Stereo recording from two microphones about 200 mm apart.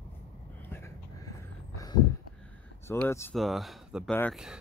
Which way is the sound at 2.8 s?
10° left (ahead or behind).